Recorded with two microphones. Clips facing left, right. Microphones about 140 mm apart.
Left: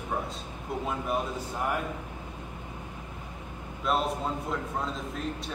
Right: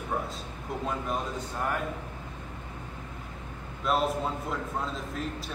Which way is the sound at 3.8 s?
Centre (ahead or behind).